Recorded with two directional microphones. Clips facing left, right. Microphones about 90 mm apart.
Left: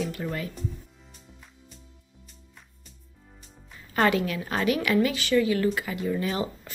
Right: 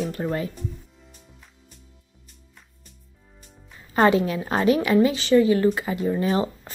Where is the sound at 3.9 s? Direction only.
25° right (ahead or behind).